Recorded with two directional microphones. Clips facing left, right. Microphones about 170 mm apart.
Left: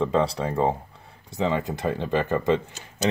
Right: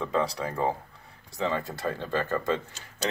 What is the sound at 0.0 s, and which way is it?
Speech, 25° left (ahead or behind).